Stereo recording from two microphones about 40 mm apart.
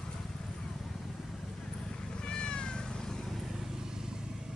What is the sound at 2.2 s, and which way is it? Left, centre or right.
Cat, left.